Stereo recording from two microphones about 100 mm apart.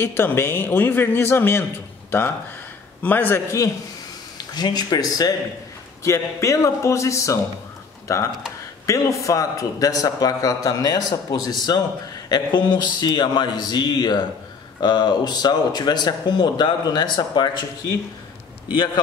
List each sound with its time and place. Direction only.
0.0 s a man's voice: 20° left (ahead or behind)
4.6 s a man's voice: 45° left (ahead or behind)